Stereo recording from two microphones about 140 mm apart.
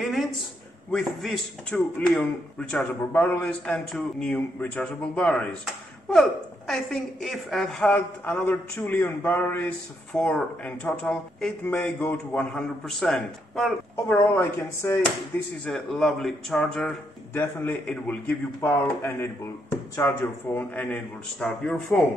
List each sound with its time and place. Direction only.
0.0 s a sound: centre (ahead or behind)
0.9 s speech: centre (ahead or behind)
6.7 s speech: centre (ahead or behind)
7.9 s speech: 15° left (ahead or behind)
14.0 s speech: 15° left (ahead or behind)
15.6 s speech: 5° left (ahead or behind)